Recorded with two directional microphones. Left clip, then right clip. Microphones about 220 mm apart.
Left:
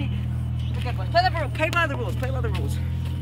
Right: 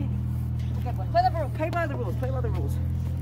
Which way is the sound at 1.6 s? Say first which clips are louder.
Left 8 dB; 10° left (ahead or behind).